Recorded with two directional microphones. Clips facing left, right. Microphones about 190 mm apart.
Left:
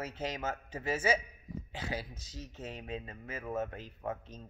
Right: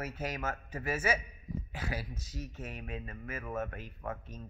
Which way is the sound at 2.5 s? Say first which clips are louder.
Left 5 dB; 20° left (ahead or behind).